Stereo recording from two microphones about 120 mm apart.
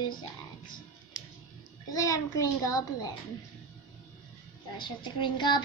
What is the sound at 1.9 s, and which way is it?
A child's voice, 30° left (ahead or behind).